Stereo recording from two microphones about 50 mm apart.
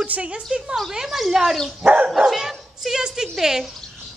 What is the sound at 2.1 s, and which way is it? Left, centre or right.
Speech, centre.